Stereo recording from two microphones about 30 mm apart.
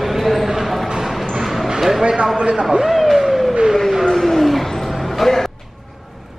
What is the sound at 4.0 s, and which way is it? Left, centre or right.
Wild animals, centre.